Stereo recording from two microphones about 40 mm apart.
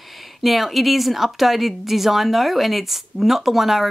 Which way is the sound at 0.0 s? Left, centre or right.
Centre.